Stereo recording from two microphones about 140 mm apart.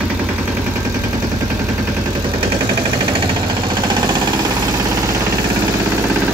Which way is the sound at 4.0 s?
30° right (ahead or behind).